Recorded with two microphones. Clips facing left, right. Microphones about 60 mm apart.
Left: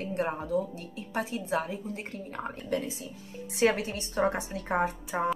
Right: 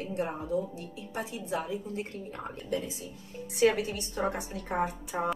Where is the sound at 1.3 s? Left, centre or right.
Left.